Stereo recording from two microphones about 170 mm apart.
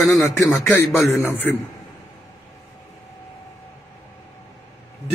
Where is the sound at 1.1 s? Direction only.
15° left (ahead or behind).